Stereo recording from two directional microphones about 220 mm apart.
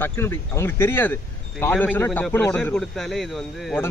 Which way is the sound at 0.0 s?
10° left (ahead or behind).